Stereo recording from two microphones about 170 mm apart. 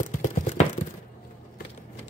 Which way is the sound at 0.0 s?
45° left (ahead or behind).